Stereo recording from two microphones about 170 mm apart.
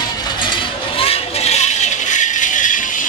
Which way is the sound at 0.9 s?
35° left (ahead or behind).